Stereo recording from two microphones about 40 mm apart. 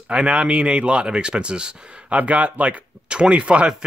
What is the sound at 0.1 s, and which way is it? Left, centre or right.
Speech, right.